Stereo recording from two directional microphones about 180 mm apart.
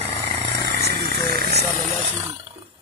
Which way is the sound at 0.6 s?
65° right (ahead or behind).